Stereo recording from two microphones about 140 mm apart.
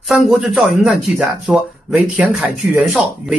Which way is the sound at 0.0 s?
Centre (ahead or behind).